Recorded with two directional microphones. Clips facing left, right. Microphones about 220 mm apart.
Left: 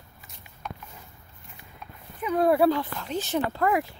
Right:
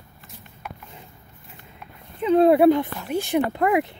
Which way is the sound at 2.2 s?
25° right (ahead or behind).